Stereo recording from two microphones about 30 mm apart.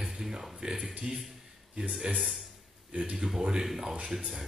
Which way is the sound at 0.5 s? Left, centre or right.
Right.